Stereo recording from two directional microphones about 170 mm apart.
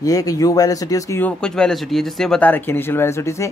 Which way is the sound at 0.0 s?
20° left (ahead or behind).